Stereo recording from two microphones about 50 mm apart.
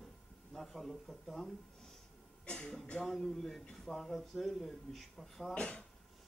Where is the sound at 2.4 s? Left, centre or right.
Left.